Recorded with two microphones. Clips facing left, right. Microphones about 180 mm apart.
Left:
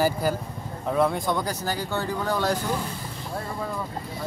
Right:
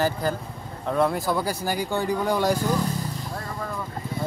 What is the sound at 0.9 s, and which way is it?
Speech, centre (ahead or behind).